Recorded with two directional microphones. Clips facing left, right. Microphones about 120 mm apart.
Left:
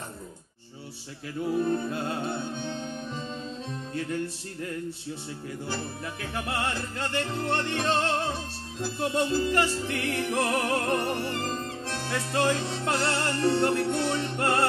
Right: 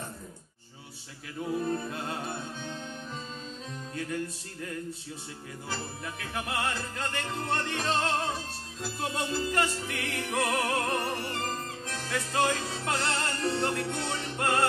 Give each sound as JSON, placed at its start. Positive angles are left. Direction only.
{"t": 1.7, "sound": "music", "side_deg": 30}
{"t": 3.9, "sound": "music", "side_deg": 30}
{"t": 6.3, "sound": "music", "side_deg": 30}